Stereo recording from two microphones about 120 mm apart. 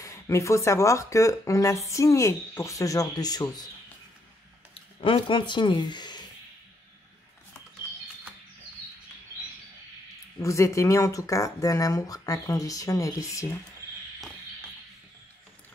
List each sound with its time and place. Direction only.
0.0 s speech: 25° left (ahead or behind)
4.7 s speech: 50° left (ahead or behind)
10.4 s speech: 25° left (ahead or behind)